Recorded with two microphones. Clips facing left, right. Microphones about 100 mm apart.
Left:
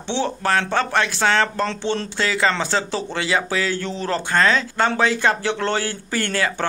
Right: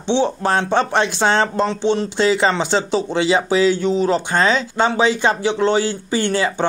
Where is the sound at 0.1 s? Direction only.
20° right (ahead or behind).